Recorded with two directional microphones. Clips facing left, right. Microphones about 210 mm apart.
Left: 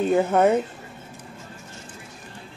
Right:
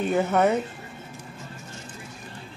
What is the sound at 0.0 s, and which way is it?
Speech, 30° left (ahead or behind).